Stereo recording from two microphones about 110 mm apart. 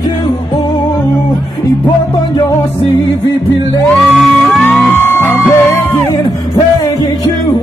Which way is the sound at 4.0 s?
Centre (ahead or behind).